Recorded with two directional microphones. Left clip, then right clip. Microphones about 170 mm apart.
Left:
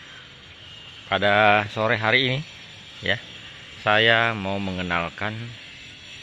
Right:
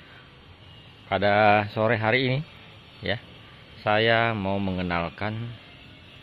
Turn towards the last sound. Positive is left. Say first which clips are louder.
# left 2 dB
turn(degrees=-5)  # may be behind; listen again after turning